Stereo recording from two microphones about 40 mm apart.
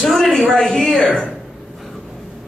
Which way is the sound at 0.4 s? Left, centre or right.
Centre.